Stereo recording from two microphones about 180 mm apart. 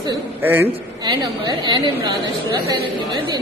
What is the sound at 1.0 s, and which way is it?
A woman's voice, 25° right (ahead or behind).